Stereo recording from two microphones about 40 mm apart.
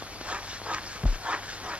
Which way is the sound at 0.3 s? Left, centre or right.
Right.